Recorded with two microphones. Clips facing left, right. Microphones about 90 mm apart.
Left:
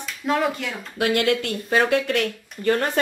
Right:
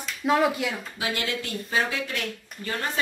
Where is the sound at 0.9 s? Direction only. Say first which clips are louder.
Left 9 dB; 60° left (ahead or behind).